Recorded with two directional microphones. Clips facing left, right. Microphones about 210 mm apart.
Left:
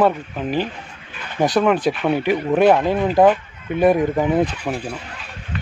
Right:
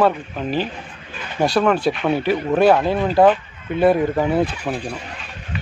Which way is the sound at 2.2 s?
15° left (ahead or behind).